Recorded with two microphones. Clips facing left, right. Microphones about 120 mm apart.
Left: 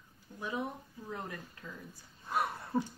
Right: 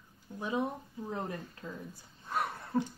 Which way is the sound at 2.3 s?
5° left (ahead or behind).